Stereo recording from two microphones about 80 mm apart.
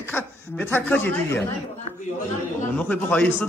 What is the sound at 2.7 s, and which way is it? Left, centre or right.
Speech, centre.